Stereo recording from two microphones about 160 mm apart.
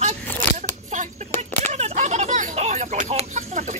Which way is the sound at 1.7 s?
45° right (ahead or behind).